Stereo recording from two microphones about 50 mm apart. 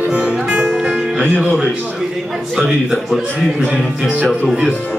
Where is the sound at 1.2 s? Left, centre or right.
Right.